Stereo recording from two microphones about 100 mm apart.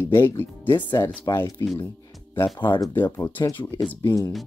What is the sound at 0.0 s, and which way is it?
Speech, 25° left (ahead or behind).